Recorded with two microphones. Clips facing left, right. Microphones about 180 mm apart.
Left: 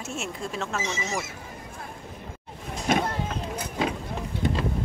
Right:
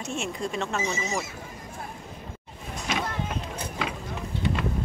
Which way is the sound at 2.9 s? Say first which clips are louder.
Left 6 dB; 55° left (ahead or behind).